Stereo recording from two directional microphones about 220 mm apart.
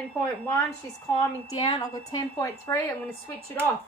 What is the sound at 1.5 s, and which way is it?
A woman's voice, 15° left (ahead or behind).